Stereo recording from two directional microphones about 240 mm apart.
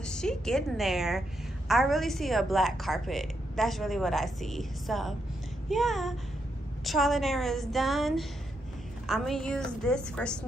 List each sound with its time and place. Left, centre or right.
0.0 s a woman's voice: centre